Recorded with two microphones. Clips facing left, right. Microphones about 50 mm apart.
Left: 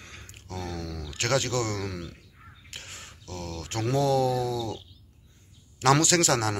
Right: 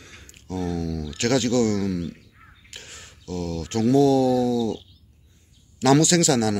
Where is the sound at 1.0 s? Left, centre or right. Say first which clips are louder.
Right 4 dB; left.